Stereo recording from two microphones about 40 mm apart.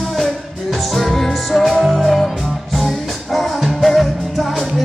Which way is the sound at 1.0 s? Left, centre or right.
Centre.